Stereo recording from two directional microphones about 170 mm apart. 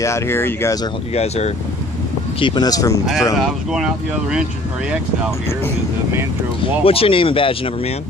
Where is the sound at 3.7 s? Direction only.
Centre (ahead or behind).